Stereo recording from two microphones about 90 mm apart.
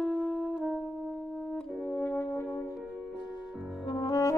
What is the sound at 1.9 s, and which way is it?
French horn, 20° left (ahead or behind).